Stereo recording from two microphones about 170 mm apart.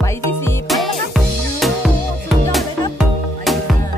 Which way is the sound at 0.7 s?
Centre (ahead or behind).